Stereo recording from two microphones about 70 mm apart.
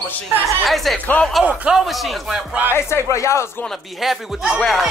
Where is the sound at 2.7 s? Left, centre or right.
Left.